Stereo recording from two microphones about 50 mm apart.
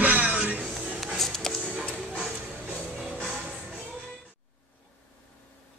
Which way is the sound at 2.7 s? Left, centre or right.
Centre.